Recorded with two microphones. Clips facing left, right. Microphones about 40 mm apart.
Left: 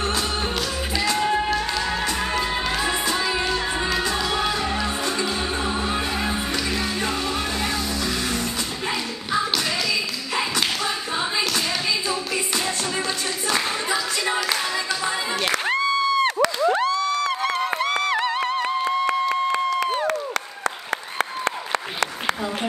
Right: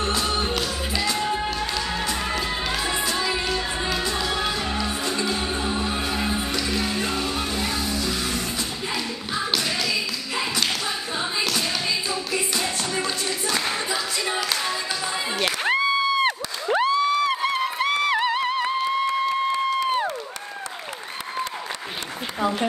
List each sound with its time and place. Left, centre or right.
1.2 s music: centre
3.3 s music: centre
5.7 s music: left
6.5 s music: centre
7.6 s music: left
15.4 s crowd: centre
16.7 s a sound: centre